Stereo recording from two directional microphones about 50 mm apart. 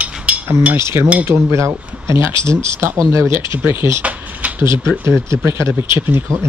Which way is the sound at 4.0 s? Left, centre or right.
Right.